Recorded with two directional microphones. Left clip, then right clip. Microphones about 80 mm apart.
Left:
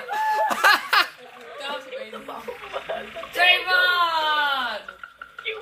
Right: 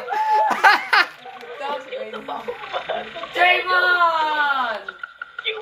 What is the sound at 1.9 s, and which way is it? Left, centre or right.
Frog, right.